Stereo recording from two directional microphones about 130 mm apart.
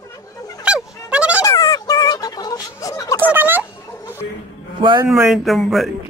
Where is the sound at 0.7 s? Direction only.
5° right (ahead or behind).